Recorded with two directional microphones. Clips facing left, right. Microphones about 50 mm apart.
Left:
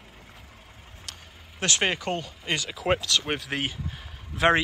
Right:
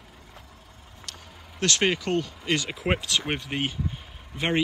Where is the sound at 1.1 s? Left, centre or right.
Centre.